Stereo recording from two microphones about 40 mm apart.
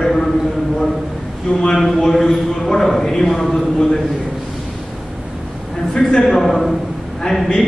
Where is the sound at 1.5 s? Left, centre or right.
Centre.